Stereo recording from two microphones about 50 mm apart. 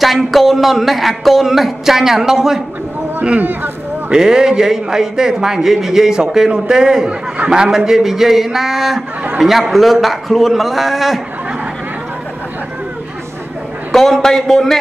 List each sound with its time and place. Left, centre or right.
0.0 s speech: centre
3.3 s speech: right
4.1 s a man's voice: centre
13.9 s speech: centre